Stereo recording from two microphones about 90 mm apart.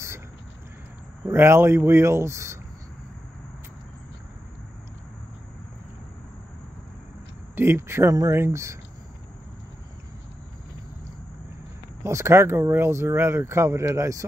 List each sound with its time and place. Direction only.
1.2 s speech: 30° right (ahead or behind)
7.5 s speech: 25° right (ahead or behind)
12.0 s speech: 30° right (ahead or behind)